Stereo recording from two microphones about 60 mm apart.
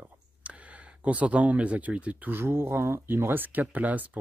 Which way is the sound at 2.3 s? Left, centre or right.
Right.